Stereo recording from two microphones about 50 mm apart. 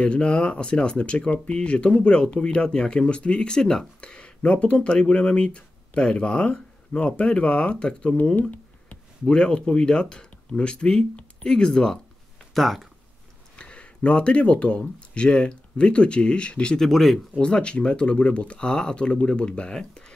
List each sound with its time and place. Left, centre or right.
0.0 s speech: left
8.4 s a sound: left
9.2 s speech: centre
12.5 s speech: centre
13.6 s speech: left
16.7 s speech: centre
17.4 s speech: left